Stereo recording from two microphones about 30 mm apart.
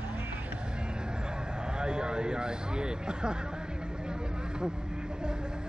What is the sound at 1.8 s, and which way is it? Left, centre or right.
Speech, right.